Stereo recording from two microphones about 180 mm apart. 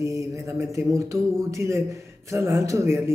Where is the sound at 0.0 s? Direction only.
15° right (ahead or behind).